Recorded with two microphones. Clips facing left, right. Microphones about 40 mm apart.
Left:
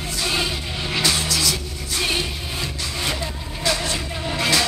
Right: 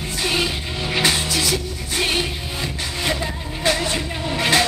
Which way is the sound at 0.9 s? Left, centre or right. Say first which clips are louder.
Right 2 dB; right.